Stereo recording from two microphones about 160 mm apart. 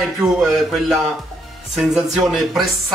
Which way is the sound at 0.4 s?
Centre (ahead or behind).